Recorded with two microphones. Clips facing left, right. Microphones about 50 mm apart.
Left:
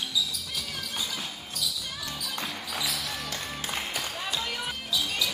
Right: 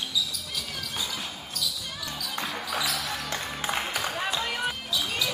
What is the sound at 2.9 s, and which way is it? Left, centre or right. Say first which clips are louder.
Music: right 3 dB; centre.